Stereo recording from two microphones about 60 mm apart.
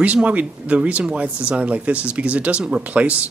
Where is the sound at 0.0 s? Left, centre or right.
Right.